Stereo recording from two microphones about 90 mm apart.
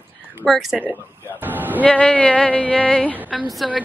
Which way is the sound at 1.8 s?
15° left (ahead or behind).